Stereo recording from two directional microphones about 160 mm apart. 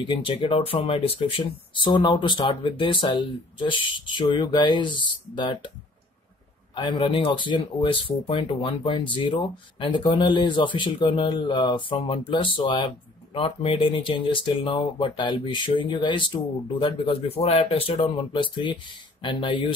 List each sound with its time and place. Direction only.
0.0 s speech: 35° left (ahead or behind)
6.7 s speech: 30° left (ahead or behind)